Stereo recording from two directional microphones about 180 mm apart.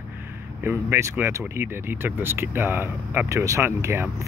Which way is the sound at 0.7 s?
15° right (ahead or behind).